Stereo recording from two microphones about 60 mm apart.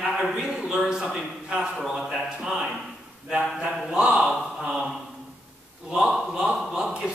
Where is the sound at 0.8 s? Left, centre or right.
Centre.